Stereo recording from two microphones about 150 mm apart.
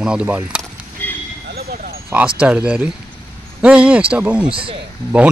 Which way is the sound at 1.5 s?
90° right.